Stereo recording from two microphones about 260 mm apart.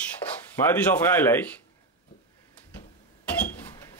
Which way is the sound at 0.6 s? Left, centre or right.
Centre.